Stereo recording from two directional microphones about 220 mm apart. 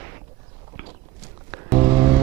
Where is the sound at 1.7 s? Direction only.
20° right (ahead or behind).